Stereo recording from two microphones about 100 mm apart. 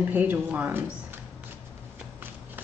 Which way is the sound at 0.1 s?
15° right (ahead or behind).